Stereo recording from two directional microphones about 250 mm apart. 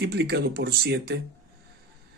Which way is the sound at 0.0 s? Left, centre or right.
Right.